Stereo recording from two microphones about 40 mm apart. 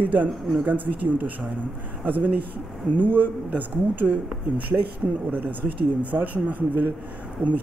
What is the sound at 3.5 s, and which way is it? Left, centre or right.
Speech, right.